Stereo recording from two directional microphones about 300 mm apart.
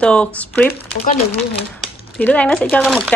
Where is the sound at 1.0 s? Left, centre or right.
Centre.